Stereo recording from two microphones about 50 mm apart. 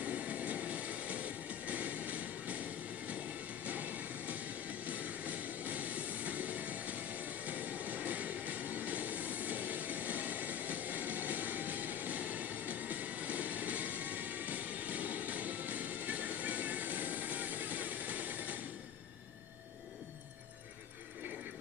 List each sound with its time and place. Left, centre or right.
0.0 s train: right
1.7 s vehicle: right
3.6 s music: right
4.8 s vehicle: right